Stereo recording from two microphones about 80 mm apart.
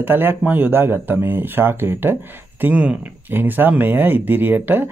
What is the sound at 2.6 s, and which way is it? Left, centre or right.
Speech, centre.